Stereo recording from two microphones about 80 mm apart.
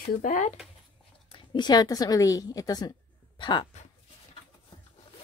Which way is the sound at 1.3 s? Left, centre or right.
Left.